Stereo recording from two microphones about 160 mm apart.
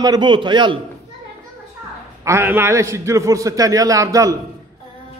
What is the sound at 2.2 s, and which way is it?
A man's voice, 15° right (ahead or behind).